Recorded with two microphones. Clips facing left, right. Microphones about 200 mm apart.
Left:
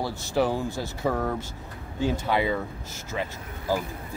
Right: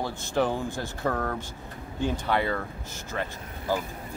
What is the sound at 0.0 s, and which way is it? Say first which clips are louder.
Speech: left 1 dB; 10° left (ahead or behind).